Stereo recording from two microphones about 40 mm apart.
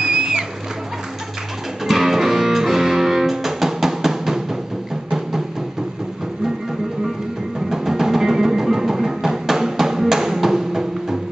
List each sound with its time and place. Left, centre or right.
0.0 s music: centre
1.9 s music: centre
7.7 s music: centre